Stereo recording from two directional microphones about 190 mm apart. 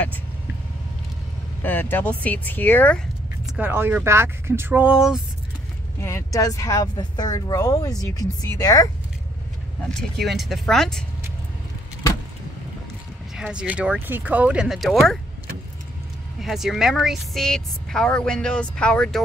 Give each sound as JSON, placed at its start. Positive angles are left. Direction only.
{"t": 1.6, "sound": "speech", "side_deg": 10}
{"t": 3.5, "sound": "speech", "side_deg": -10}
{"t": 5.9, "sound": "speech", "side_deg": 15}
{"t": 9.8, "sound": "speech", "side_deg": 0}
{"t": 13.4, "sound": "speech", "side_deg": -5}
{"t": 16.3, "sound": "speech", "side_deg": 0}